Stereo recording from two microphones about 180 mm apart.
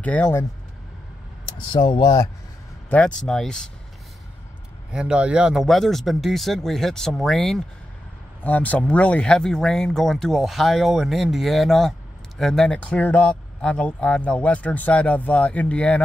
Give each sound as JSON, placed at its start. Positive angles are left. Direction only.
{"t": 0.0, "sound": "speech", "side_deg": 10}
{"t": 1.7, "sound": "speech", "side_deg": 25}
{"t": 2.9, "sound": "speech", "side_deg": 5}
{"t": 4.9, "sound": "speech", "side_deg": -5}